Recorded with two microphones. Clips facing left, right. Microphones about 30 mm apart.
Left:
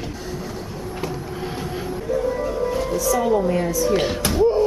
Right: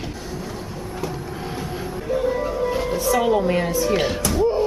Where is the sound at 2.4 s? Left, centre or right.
Right.